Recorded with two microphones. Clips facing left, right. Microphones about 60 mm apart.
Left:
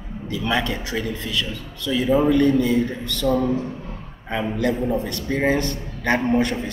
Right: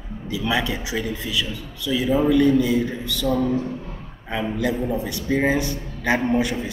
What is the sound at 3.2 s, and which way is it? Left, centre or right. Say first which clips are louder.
Speech: left 2 dB; left.